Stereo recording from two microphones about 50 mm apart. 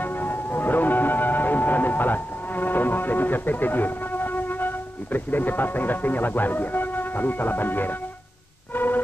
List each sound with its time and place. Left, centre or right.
0.0 s music: left